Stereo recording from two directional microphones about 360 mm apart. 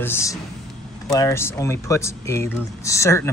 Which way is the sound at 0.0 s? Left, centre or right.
Centre.